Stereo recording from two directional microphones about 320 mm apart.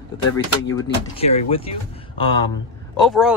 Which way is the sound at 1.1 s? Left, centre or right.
Centre.